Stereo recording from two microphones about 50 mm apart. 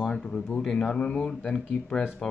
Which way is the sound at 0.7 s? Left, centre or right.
Centre.